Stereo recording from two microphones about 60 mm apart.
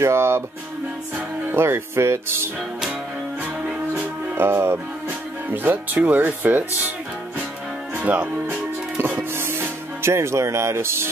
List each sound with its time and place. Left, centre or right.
0.0 s speech: right
1.5 s speech: right
3.9 s music: right
5.5 s speech: right
7.9 s music: right
9.4 s speech: right